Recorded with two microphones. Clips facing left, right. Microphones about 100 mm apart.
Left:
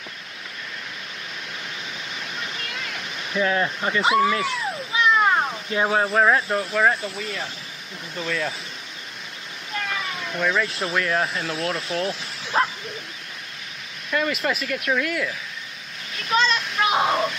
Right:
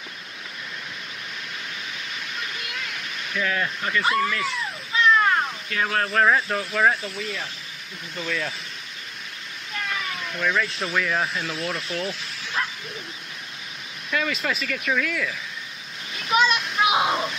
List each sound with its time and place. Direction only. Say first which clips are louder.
2.7 s waterfall: left 1 dB; centre (ahead or behind)
3.3 s speech: left 4 dB; 25° left (ahead or behind)
4.9 s a sound: even; 15° left (ahead or behind)
5.5 s speech: left 4 dB; 25° left (ahead or behind)
6.1 s speech: right 1 dB; 5° left (ahead or behind)
9.8 s speech: right 1 dB; 10° left (ahead or behind)
12.6 s dog: left 7 dB; 40° left (ahead or behind)
14.1 s speech: left 2 dB; 5° left (ahead or behind)
16.2 s a sound: right 1 dB; 10° right (ahead or behind)
16.8 s speech: left 1 dB; 5° right (ahead or behind)